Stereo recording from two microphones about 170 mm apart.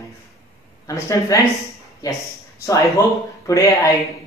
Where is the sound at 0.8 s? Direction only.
20° left (ahead or behind).